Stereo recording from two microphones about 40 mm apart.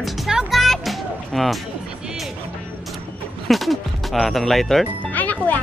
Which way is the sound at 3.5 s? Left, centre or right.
Centre.